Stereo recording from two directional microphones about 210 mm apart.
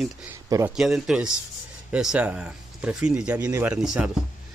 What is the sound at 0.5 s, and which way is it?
Speech, 15° right (ahead or behind).